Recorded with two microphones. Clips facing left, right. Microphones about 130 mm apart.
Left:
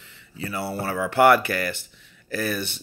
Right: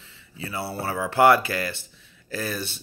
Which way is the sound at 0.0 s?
25° right (ahead or behind).